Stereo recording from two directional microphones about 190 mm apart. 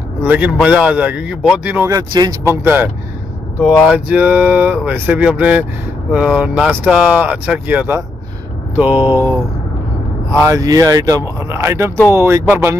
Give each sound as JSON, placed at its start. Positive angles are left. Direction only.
{"t": 0.2, "sound": "speech", "side_deg": -10}
{"t": 1.9, "sound": "speech", "side_deg": -20}
{"t": 10.4, "sound": "speech", "side_deg": -15}